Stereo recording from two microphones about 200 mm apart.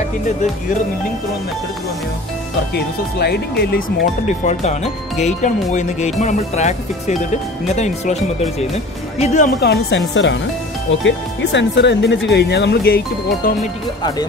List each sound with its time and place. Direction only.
2.7 s speech: 55° left (ahead or behind)
4.3 s speech: 35° left (ahead or behind)
9.6 s speech: 55° left (ahead or behind)